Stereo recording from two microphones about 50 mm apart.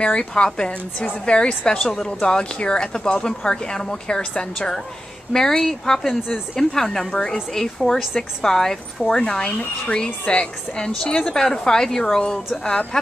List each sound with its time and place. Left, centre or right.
0.0 s a woman's voice: centre
10.9 s speech: centre